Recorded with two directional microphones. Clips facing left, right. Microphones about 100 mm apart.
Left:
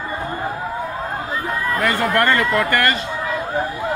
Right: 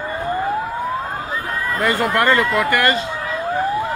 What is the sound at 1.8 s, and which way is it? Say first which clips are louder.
A man's voice: right 1 dB; 20° right (ahead or behind).